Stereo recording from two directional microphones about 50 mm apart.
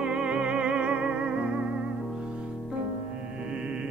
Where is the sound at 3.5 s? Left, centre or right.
Centre.